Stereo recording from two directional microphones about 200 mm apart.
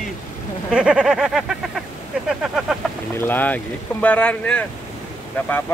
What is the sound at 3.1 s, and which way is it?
Speech, 10° left (ahead or behind).